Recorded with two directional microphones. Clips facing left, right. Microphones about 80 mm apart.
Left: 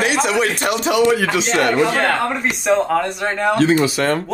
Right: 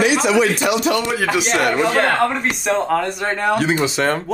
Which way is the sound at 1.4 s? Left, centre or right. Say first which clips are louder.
Left 1 dB; centre.